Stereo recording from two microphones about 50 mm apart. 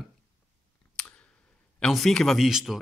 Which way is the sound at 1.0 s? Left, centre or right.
Centre.